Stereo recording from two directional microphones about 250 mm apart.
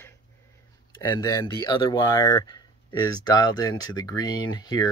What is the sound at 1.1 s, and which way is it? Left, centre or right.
Speech, centre.